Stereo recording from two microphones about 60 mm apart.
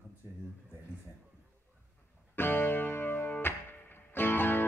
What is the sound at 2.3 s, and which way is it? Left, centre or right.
Music, left.